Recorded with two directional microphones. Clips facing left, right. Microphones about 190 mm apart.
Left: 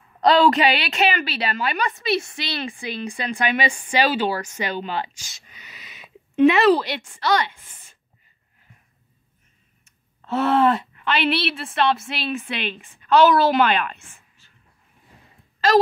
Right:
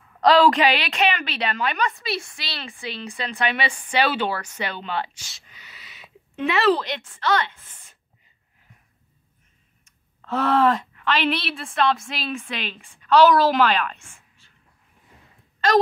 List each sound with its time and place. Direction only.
0.2 s speech: centre (ahead or behind)
1.9 s a woman's voice: 20° left (ahead or behind)
9.8 s speech: 5° left (ahead or behind)